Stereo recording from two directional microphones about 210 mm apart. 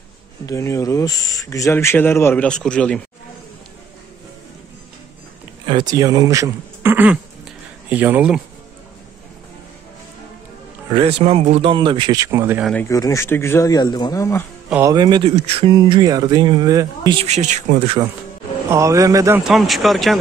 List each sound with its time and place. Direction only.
0.5 s speech: 15° left (ahead or behind)
5.7 s speech: 20° right (ahead or behind)
10.9 s a man's voice: 25° right (ahead or behind)
12.6 s speech: 10° left (ahead or behind)
14.7 s speech: 15° right (ahead or behind); by 18.0 s 30° right (ahead or behind)
18.7 s speech: 15° right (ahead or behind)
19.4 s speech: centre (ahead or behind)